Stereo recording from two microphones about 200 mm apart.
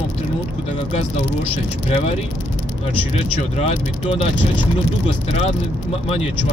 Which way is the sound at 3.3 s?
30° left (ahead or behind).